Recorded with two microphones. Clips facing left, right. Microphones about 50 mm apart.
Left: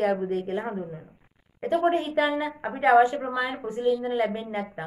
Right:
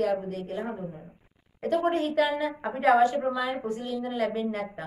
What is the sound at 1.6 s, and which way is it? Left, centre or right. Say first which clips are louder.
A woman's voice: left 2 dB; centre.